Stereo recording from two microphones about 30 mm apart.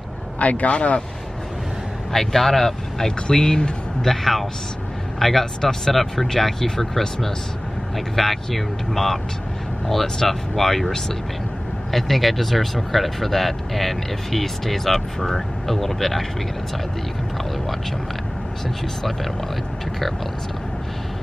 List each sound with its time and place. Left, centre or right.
0.4 s a man's voice: left
2.1 s speech: centre
3.3 s speech: left
4.0 s speech: centre
5.6 s speech: centre
10.2 s speech: centre
11.9 s speech: centre